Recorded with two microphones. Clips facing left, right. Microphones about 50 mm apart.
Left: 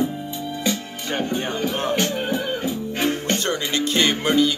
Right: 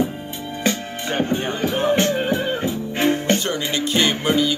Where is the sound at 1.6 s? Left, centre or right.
Centre.